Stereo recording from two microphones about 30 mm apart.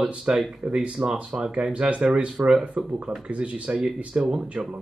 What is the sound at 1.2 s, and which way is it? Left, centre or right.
Speech, right.